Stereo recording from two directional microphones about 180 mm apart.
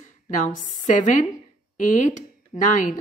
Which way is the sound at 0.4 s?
45° left (ahead or behind).